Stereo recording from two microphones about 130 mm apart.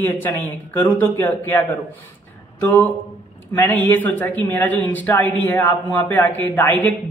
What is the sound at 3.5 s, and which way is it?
Speech, 15° left (ahead or behind).